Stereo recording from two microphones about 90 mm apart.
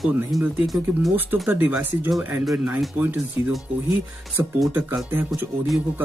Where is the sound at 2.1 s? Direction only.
Centre (ahead or behind).